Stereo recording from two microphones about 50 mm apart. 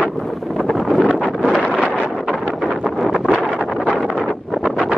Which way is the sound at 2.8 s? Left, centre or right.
Centre.